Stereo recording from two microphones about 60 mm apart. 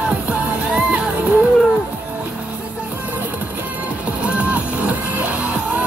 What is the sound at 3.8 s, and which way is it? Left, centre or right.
Music, right.